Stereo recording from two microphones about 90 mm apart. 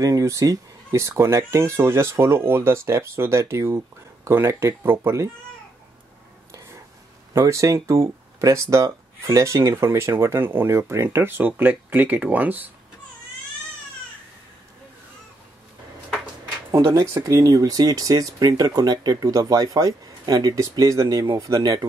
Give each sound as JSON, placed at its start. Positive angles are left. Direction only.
{"t": 0.0, "sound": "speech", "side_deg": -35}
{"t": 7.3, "sound": "speech", "side_deg": -35}
{"t": 16.7, "sound": "speech", "side_deg": -35}